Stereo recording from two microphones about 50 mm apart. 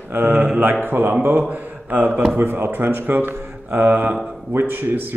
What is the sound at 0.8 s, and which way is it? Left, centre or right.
Speech, right.